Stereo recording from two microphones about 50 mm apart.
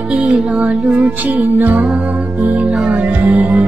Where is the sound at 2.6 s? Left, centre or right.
Centre.